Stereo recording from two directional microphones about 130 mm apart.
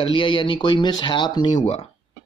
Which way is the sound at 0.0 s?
40° left (ahead or behind).